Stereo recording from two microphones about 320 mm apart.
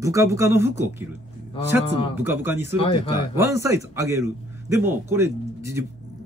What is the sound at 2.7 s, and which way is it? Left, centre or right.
Speech, centre.